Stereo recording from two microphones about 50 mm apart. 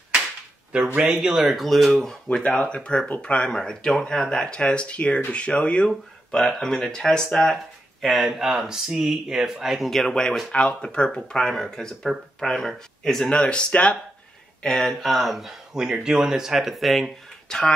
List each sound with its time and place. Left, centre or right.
0.7 s speech: right
1.1 s speech: centre
2.5 s speech: left
6.3 s speech: centre
8.0 s speech: centre
10.5 s speech: centre
14.6 s speech: centre
17.5 s speech: centre